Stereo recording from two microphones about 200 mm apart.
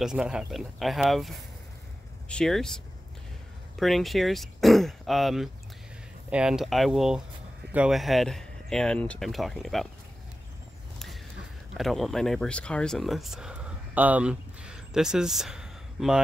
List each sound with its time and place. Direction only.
0.0 s speech: 5° right (ahead or behind)
11.7 s speech: centre (ahead or behind)